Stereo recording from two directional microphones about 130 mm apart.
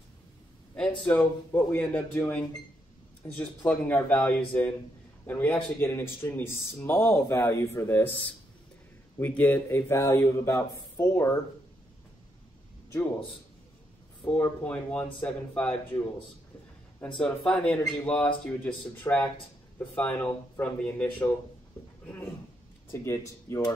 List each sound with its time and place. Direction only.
0.7 s speech: 15° left (ahead or behind)
9.4 s speech: 15° left (ahead or behind)
14.2 s speech: 15° left (ahead or behind)
17.2 s speech: 10° left (ahead or behind)
22.0 s a sound: 15° left (ahead or behind)
22.8 s speech: 20° left (ahead or behind)